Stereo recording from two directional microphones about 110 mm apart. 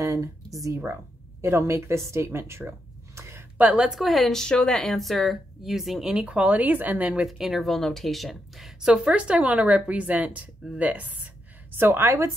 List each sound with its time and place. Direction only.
0.0 s speech: 30° right (ahead or behind); by 7.2 s 15° right (ahead or behind)
7.2 s a woman's voice: centre (ahead or behind); by 12.3 s 20° right (ahead or behind)